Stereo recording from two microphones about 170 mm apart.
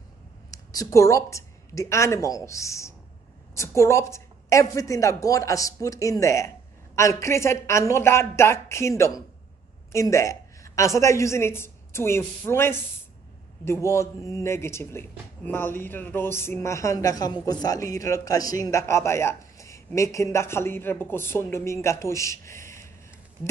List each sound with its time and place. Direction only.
0.5 s a woman's voice: 20° left (ahead or behind)